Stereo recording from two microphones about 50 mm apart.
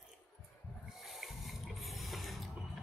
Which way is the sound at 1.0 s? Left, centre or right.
Centre.